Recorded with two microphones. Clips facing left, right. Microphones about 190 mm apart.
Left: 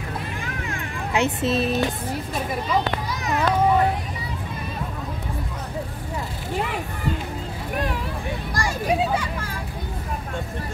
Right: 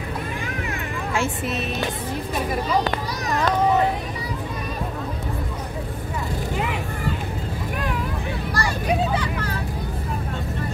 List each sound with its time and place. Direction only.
1.1 s speech: 20° left (ahead or behind)
8.5 s children playing: 10° left (ahead or behind)